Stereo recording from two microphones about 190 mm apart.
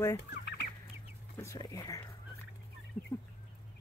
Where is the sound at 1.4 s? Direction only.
15° left (ahead or behind).